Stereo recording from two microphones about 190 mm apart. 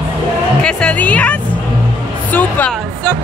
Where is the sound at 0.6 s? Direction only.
5° left (ahead or behind).